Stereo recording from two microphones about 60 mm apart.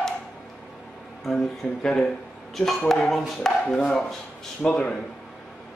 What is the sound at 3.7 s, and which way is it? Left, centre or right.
Speech, centre.